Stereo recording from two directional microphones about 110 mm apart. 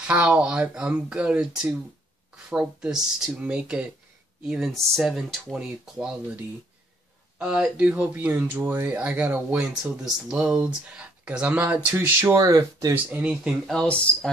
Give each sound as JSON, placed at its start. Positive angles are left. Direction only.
{"t": 0.0, "sound": "speech", "side_deg": -10}
{"t": 12.4, "sound": "speech", "side_deg": -30}
{"t": 12.9, "sound": "speech", "side_deg": -10}
{"t": 13.7, "sound": "speech", "side_deg": 10}